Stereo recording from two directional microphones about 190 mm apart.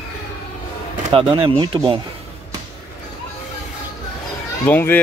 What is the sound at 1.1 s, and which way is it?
Speech, 30° right (ahead or behind).